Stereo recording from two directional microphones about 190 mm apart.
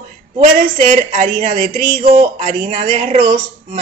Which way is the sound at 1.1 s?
35° right (ahead or behind).